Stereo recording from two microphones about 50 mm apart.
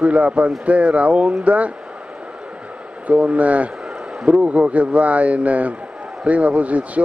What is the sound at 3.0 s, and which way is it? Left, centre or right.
A man's voice, right.